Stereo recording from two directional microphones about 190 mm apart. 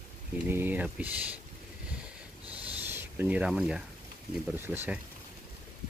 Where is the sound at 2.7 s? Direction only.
10° right (ahead or behind).